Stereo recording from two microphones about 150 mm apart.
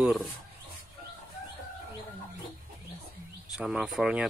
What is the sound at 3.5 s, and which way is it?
Speech, 5° right (ahead or behind).